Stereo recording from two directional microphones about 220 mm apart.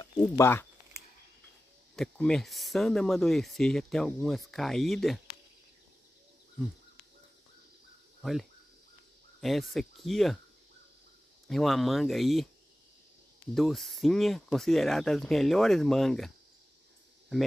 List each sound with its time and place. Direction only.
0.0 s speech: 15° left (ahead or behind)
2.0 s speech: 5° left (ahead or behind)
8.2 s speech: centre (ahead or behind)
11.4 s speech: centre (ahead or behind)
13.6 s speech: centre (ahead or behind)